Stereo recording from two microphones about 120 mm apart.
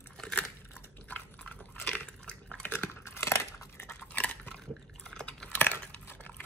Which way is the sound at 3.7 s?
15° left (ahead or behind).